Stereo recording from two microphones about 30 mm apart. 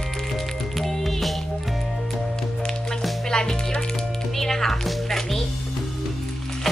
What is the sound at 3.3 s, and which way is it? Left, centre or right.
Music, left.